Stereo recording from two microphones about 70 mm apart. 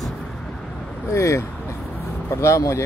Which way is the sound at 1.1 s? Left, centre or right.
Left.